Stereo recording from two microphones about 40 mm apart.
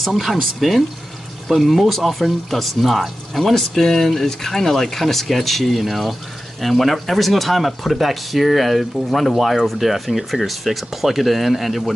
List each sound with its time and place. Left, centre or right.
0.0 s speech: centre